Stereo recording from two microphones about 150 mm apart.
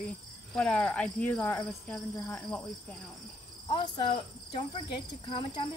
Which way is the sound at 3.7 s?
30° left (ahead or behind).